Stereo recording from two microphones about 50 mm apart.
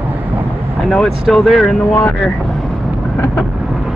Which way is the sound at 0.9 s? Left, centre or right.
Centre.